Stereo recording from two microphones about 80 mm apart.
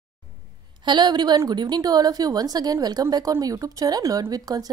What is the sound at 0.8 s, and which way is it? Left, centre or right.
A woman's voice, right.